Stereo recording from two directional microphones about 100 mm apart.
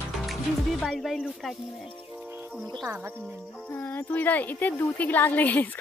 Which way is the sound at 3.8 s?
20° left (ahead or behind).